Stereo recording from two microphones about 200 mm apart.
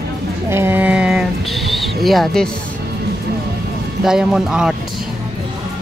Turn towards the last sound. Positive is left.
turn(degrees=-5)  # may be behind; listen again after turning